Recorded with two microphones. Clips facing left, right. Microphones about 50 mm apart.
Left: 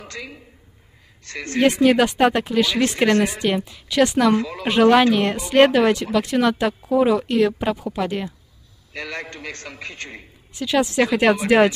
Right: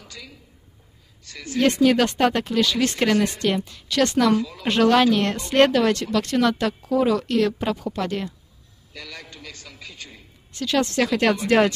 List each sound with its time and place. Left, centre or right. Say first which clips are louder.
0.0 s a woman's voice: left 7 dB; left
1.6 s speech: left 2 dB; centre
4.4 s a man's voice: left 2 dB; left
5.0 s speech: left 2 dB; centre
8.9 s a man's voice: left 8 dB; left
10.5 s speech: left 2 dB; centre